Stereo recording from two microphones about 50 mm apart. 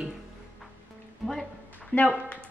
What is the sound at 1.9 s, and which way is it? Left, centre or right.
Speech, left.